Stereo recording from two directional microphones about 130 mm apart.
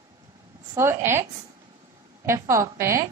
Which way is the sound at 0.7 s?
20° right (ahead or behind).